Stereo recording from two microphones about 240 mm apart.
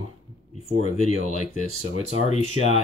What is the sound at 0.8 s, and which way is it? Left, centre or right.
Speech, left.